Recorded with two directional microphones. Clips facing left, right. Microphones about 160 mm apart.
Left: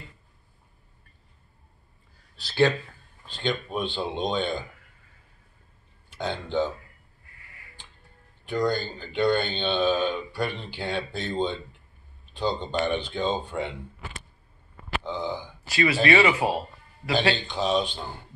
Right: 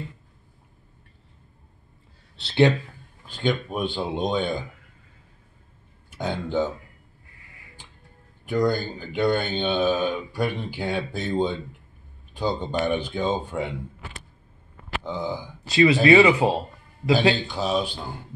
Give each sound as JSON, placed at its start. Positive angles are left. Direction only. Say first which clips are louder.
{"t": 2.3, "sound": "speech", "louder": "right 3 dB", "side_deg": -25}
{"t": 3.4, "sound": "speech", "louder": "right 3 dB", "side_deg": -10}
{"t": 6.1, "sound": "speech", "louder": "right 2 dB", "side_deg": -10}
{"t": 8.5, "sound": "speech", "louder": "right 3 dB", "side_deg": -10}
{"t": 15.0, "sound": "speech", "louder": "right 3 dB", "side_deg": -10}
{"t": 15.7, "sound": "speech", "louder": "right 6 dB", "side_deg": -20}
{"t": 17.5, "sound": "speech", "louder": "even", "side_deg": -5}